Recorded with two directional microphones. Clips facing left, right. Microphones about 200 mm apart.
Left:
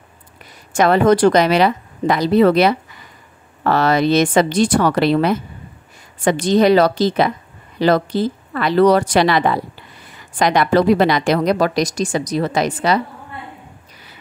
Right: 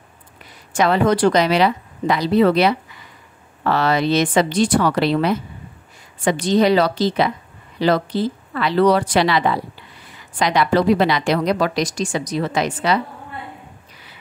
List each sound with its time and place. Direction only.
0.7 s a woman's voice: 45° left (ahead or behind)